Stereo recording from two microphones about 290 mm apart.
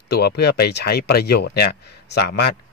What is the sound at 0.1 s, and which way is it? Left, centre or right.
Speech, left.